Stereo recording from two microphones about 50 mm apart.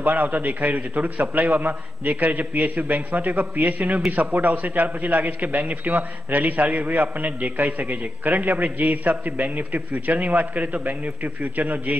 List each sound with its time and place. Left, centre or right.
0.0 s a man's voice: right